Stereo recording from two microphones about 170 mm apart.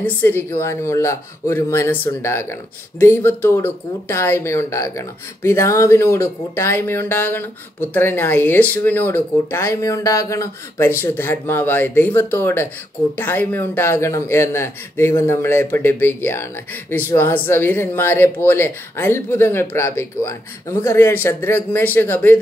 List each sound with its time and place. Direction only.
0.0 s speech: 10° left (ahead or behind)